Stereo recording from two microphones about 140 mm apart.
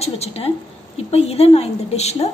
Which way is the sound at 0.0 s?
45° left (ahead or behind).